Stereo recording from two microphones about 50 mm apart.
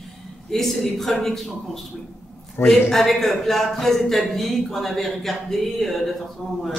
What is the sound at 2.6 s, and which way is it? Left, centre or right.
Speech, left.